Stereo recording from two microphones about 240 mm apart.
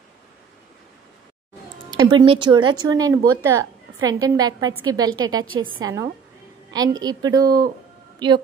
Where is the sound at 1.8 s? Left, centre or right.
Centre.